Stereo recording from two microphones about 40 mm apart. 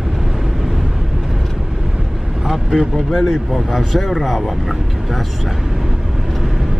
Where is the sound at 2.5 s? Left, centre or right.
Centre.